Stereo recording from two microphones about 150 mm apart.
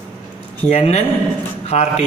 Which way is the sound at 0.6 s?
45° left (ahead or behind).